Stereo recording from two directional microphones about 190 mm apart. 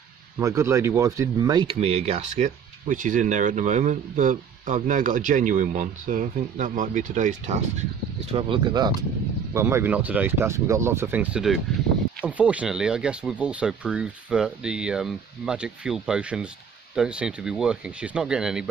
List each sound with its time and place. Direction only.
0.4 s speech: 15° right (ahead or behind); by 7.5 s 40° right (ahead or behind)
8.3 s speech: 30° right (ahead or behind); by 18.7 s 5° right (ahead or behind)